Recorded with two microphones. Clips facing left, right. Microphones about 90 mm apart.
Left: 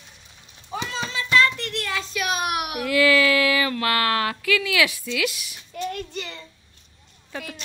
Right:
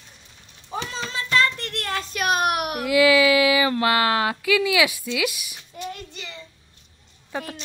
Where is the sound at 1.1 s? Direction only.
35° right (ahead or behind).